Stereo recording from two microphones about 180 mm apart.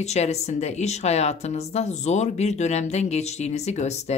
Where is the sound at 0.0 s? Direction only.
35° left (ahead or behind).